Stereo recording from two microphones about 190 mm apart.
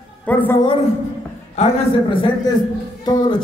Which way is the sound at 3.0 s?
20° left (ahead or behind).